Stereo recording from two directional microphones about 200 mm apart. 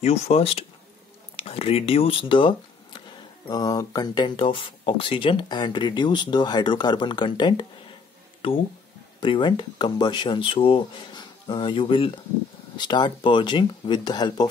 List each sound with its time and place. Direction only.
0.0 s speech: 30° left (ahead or behind)
9.2 s speech: 25° left (ahead or behind)